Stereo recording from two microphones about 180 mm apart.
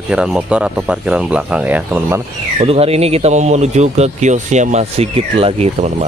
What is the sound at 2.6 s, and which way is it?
Speech, 35° right (ahead or behind).